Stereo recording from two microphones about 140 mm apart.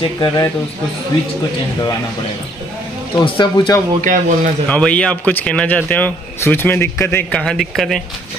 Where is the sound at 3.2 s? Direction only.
35° left (ahead or behind).